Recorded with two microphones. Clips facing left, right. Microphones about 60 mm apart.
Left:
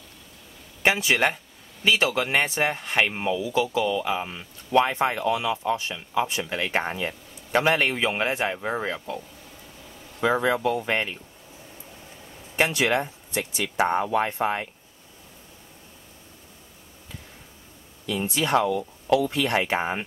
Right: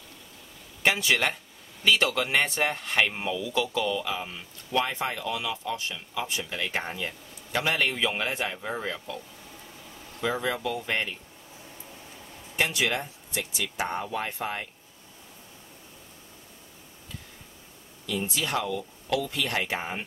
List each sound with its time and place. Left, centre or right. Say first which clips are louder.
0.8 s speech: left 3 dB; centre
4.1 s speech: left 5 dB; left
10.2 s speech: left 6 dB; left
12.5 s speech: left 5 dB; left
18.0 s speech: left 4 dB; left